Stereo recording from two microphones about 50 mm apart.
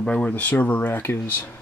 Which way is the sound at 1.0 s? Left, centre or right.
Left.